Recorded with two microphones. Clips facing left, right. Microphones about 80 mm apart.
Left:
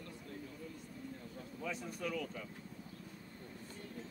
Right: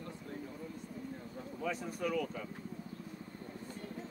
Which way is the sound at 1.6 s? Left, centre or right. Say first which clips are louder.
Right 5 dB; centre.